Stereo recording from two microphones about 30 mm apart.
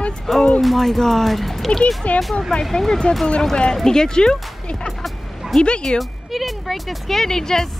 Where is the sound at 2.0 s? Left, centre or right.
Left.